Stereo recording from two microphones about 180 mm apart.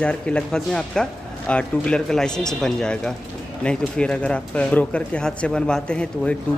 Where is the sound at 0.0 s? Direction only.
5° left (ahead or behind).